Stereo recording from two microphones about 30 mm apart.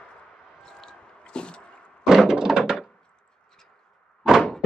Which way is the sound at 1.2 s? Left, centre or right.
Left.